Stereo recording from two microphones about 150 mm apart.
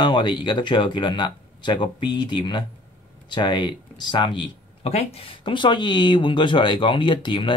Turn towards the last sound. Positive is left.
turn(degrees=30)  # may be behind; listen again after turning